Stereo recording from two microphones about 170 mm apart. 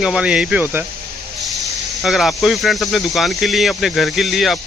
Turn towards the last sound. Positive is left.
turn(degrees=0)  # may be behind; listen again after turning